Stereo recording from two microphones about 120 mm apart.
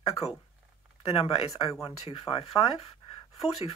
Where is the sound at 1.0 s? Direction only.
55° left (ahead or behind).